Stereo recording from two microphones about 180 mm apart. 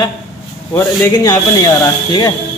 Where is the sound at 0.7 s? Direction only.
15° left (ahead or behind).